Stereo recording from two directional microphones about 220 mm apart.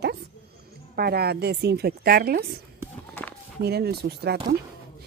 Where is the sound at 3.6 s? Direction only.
45° right (ahead or behind).